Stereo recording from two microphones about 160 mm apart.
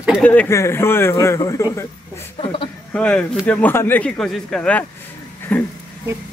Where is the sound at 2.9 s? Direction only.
5° left (ahead or behind).